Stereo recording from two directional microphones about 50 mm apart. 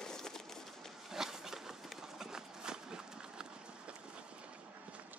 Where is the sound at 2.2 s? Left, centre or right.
Centre.